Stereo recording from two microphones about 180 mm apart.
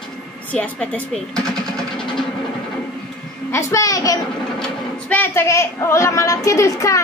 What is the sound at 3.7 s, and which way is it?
Speech, 20° left (ahead or behind).